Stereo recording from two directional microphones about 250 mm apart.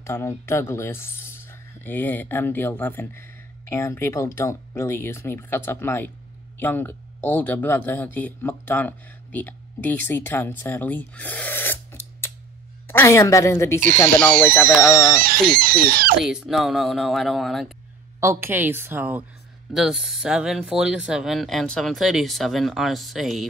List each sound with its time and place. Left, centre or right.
0.0 s speech: centre
15.1 s speech: right
16.3 s speech: centre
18.2 s a woman's voice: centre